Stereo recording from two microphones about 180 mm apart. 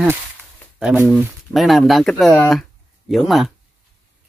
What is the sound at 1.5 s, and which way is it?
Speech, centre (ahead or behind).